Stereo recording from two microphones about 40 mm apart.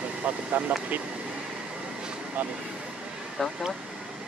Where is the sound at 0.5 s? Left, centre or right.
Right.